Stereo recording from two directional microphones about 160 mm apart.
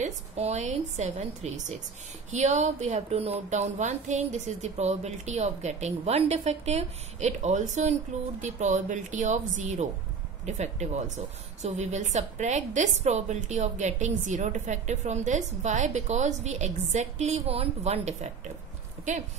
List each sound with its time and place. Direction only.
0.0 s a woman's voice: 45° right (ahead or behind)